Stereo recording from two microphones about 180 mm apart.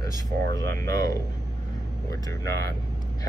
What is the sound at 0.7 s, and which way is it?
Speech, 15° left (ahead or behind).